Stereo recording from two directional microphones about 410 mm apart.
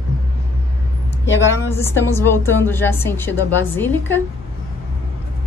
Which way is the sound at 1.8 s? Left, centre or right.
Centre.